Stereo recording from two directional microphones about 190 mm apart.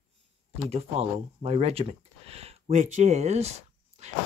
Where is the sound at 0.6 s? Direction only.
30° right (ahead or behind).